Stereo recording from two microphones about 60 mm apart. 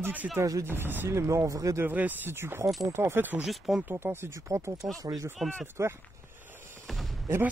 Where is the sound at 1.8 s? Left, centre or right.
Right.